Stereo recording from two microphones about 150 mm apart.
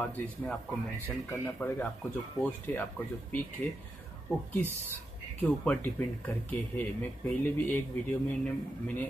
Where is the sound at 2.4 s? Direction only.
15° left (ahead or behind).